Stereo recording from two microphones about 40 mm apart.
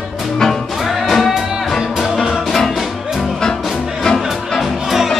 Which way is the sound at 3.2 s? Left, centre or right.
Centre.